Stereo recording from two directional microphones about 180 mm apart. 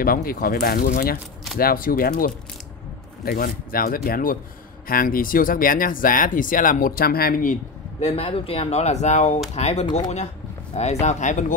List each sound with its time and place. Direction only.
0.0 s speech: 55° left (ahead or behind)
8.0 s speech: 35° left (ahead or behind)